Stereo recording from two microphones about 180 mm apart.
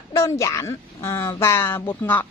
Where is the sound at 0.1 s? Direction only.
15° left (ahead or behind).